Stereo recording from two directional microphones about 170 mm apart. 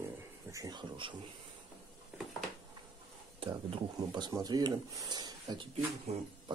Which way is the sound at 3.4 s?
30° right (ahead or behind).